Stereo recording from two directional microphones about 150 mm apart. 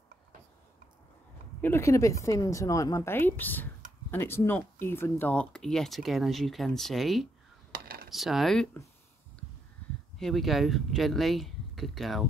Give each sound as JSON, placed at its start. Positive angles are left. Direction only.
{"t": 1.6, "sound": "speech", "side_deg": 15}
{"t": 7.7, "sound": "a sound", "side_deg": -85}
{"t": 8.1, "sound": "speech", "side_deg": 0}
{"t": 10.1, "sound": "speech", "side_deg": 0}